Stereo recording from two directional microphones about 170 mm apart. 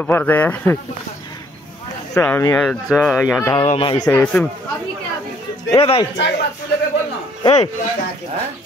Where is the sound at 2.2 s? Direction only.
15° left (ahead or behind).